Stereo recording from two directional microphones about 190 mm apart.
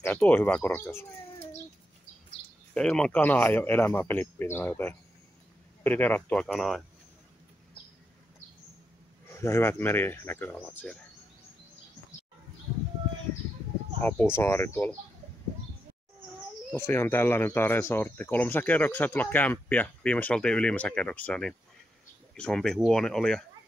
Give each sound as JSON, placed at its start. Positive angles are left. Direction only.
{"t": 0.0, "sound": "speech", "side_deg": 10}
{"t": 2.7, "sound": "speech", "side_deg": 5}
{"t": 9.3, "sound": "speech", "side_deg": 15}
{"t": 14.0, "sound": "speech", "side_deg": 10}
{"t": 16.7, "sound": "speech", "side_deg": 15}